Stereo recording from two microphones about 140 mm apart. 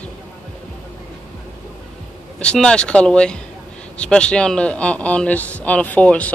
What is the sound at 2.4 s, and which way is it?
Speech, 5° left (ahead or behind).